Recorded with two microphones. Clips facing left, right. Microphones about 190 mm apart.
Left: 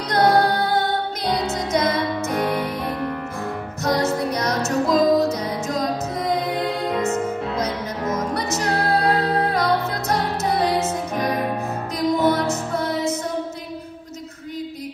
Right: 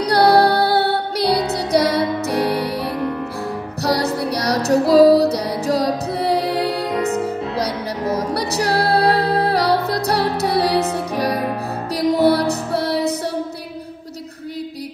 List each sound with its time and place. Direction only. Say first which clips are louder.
0.1 s music: right 3 dB; 35° right (ahead or behind)
3.8 s music: right 1 dB; 35° right (ahead or behind)